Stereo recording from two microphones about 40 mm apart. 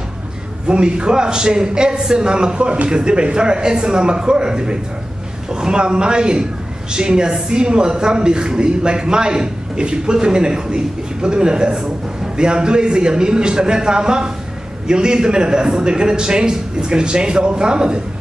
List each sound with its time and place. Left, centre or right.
0.7 s speech: right